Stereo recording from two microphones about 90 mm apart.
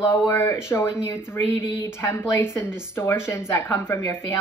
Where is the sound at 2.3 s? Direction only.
30° left (ahead or behind).